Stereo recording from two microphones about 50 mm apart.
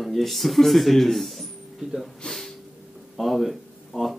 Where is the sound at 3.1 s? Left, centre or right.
Centre.